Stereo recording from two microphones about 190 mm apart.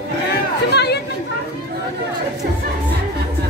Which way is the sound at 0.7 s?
60° left (ahead or behind).